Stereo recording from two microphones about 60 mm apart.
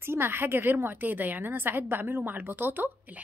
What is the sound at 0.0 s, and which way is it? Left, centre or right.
A woman's voice, right.